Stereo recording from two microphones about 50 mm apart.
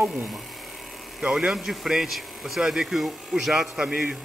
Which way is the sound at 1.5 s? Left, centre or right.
Centre.